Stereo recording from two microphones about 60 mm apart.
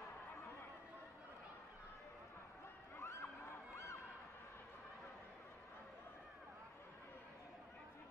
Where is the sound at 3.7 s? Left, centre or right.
Left.